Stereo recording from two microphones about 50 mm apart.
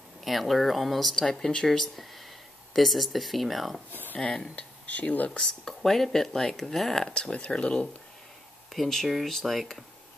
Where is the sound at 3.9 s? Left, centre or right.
Left.